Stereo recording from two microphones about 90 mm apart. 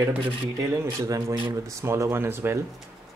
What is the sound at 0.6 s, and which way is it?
Speech, 40° right (ahead or behind).